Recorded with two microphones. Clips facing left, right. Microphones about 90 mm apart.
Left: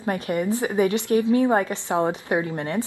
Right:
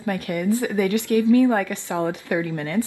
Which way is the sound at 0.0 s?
25° left (ahead or behind).